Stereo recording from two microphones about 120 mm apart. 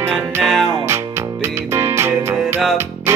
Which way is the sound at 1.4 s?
20° right (ahead or behind).